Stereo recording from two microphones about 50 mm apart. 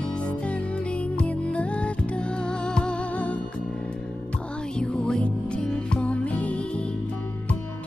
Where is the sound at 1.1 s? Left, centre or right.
Left.